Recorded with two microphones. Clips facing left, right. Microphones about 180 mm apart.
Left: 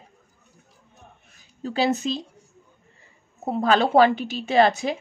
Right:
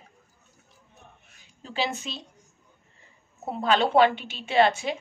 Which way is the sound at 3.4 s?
40° left (ahead or behind).